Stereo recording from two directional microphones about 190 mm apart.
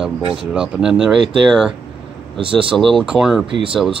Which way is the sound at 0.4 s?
5° right (ahead or behind).